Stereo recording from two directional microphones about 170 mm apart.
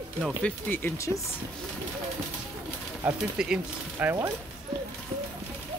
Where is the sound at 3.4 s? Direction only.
5° right (ahead or behind).